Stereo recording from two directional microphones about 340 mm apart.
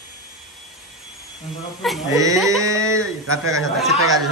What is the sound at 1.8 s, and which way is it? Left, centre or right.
A woman's voice, centre.